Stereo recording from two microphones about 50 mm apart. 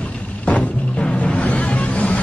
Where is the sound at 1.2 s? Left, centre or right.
Left.